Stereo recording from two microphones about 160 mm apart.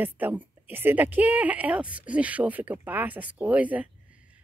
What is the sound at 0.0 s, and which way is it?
A woman's voice, 10° right (ahead or behind).